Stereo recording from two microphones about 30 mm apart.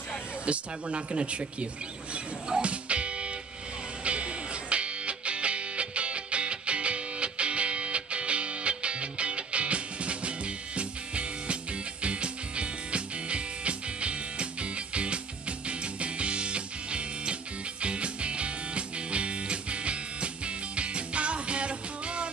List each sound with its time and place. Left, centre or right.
0.5 s speech: right
2.6 s music: right